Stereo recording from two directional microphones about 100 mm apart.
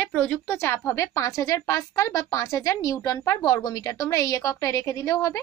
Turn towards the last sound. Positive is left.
turn(degrees=30)  # may be behind; listen again after turning